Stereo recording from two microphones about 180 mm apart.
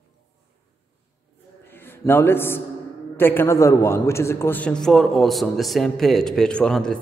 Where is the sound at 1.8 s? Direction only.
10° left (ahead or behind).